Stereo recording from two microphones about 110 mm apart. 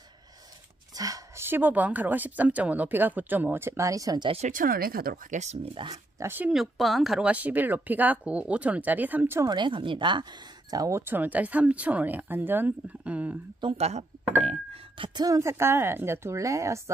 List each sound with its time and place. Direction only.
0.9 s a woman's voice: 30° right (ahead or behind)
5.3 s speech: 90° right
5.8 s speech: 55° right (ahead or behind)
6.1 s speech: 20° right (ahead or behind)
6.5 s a woman's voice: centre (ahead or behind); by 9.5 s 20° right (ahead or behind)
9.5 s speech: 45° right (ahead or behind)
10.7 s a woman's voice: 30° right (ahead or behind); by 13.4 s 10° right (ahead or behind)
13.7 s speech: 75° right (ahead or behind)
15.1 s speech: 30° right (ahead or behind)